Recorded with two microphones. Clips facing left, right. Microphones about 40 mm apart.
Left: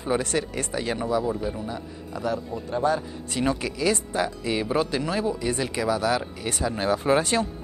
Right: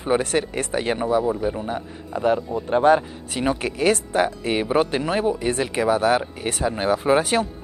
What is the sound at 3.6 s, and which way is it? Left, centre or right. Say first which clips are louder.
Speech: right 4 dB; right.